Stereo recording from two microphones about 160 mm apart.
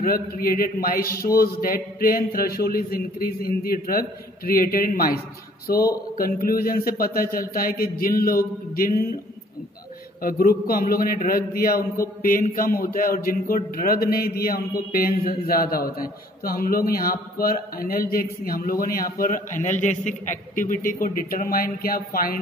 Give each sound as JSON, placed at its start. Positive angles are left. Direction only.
{"t": 0.0, "sound": "a man's voice", "side_deg": 65}
{"t": 10.2, "sound": "a man's voice", "side_deg": 65}